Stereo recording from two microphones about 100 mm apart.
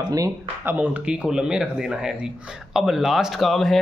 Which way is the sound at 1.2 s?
5° right (ahead or behind).